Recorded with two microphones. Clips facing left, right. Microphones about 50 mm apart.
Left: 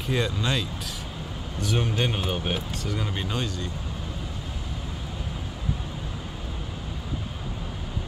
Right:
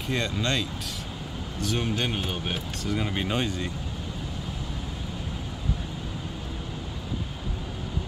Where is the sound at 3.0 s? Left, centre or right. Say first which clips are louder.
Right 4 dB; centre.